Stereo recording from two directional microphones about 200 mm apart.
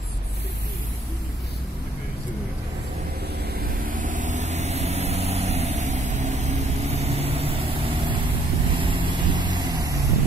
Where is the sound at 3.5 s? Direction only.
45° right (ahead or behind); by 9.9 s 20° right (ahead or behind).